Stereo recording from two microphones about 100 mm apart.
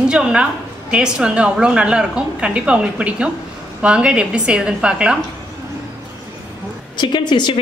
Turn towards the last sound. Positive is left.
turn(degrees=50)  # may be behind; listen again after turning